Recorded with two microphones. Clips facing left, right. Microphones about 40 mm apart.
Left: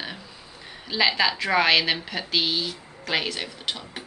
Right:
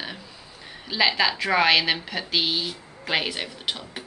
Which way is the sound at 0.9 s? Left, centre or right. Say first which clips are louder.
Even; centre.